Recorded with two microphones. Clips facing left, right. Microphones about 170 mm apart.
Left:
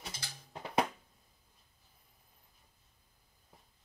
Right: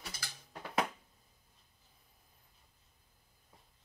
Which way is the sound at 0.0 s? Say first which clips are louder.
Left 1 dB; 25° left (ahead or behind).